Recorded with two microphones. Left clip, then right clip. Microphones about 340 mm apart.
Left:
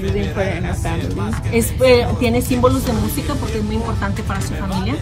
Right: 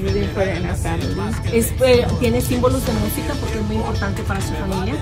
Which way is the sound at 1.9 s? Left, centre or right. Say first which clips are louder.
Left 3 dB; centre.